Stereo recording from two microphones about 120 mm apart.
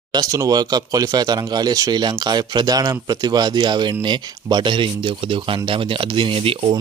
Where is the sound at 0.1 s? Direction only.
30° right (ahead or behind).